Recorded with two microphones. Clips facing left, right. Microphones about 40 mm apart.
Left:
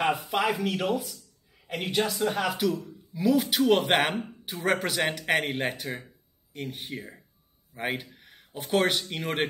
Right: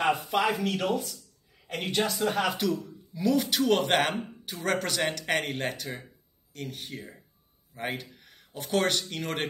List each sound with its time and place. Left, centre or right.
0.0 s a man's voice: centre